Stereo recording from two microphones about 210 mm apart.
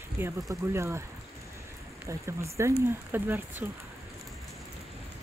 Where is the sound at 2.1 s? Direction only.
15° right (ahead or behind).